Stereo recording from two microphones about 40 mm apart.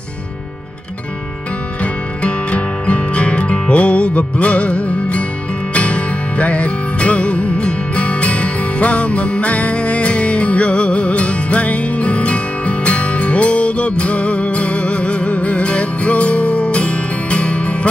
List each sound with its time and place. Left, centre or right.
1.8 s music: left